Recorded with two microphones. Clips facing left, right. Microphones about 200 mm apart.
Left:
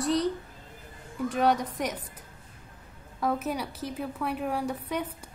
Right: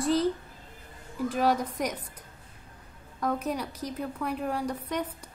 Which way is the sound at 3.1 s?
5° left (ahead or behind).